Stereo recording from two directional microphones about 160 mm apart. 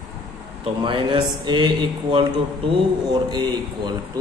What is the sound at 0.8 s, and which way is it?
A man's voice, 30° right (ahead or behind).